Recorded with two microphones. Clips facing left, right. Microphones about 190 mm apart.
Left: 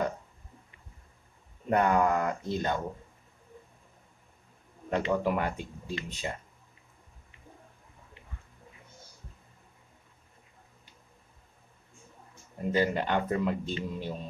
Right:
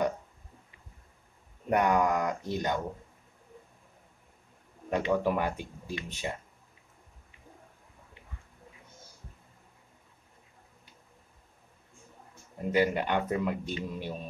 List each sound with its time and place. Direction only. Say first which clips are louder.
1.7 s a man's voice: left 1 dB; 15° right (ahead or behind)
4.8 s a man's voice: right 1 dB; 15° right (ahead or behind)
12.6 s a man's voice: right 1 dB; 15° right (ahead or behind)